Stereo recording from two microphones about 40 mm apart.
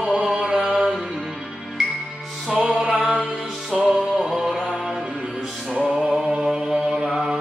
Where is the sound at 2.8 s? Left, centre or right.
Centre.